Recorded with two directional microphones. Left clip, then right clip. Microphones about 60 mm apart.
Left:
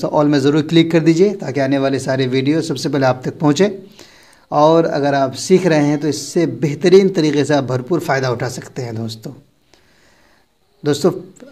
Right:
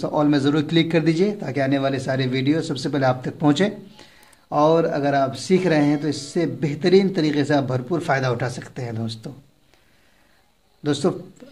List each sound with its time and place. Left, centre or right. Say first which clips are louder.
0.0 s a man's voice: left 6 dB; left
4.5 s a man's voice: left 6 dB; left
8.0 s speech: left 4 dB; centre
10.8 s a man's voice: left 6 dB; left